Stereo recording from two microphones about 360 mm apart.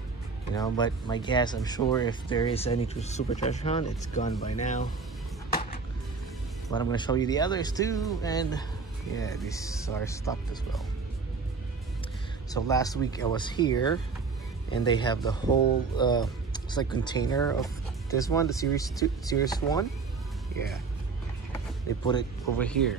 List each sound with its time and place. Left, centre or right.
0.6 s speech: centre
6.7 s speech: centre
12.5 s speech: centre
22.0 s speech: centre